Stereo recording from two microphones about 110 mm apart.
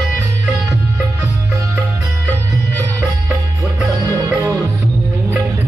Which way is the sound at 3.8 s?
30° right (ahead or behind).